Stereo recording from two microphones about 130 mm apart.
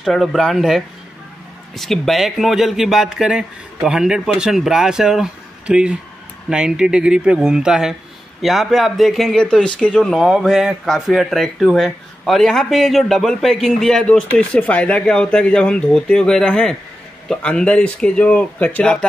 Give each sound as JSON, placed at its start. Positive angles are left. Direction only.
{"t": 0.0, "sound": "speech", "side_deg": 0}